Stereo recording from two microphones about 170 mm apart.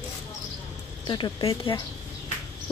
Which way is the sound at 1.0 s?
25° left (ahead or behind).